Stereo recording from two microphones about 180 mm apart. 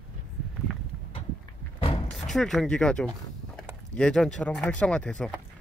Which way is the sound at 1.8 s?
30° left (ahead or behind).